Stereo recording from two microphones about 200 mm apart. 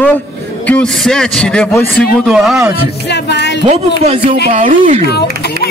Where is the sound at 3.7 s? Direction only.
30° right (ahead or behind).